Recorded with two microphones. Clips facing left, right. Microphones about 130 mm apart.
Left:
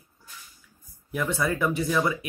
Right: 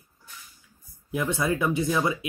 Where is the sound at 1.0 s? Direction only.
20° right (ahead or behind).